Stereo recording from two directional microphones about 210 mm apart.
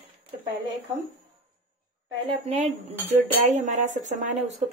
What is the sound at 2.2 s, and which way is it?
Speech, 30° right (ahead or behind).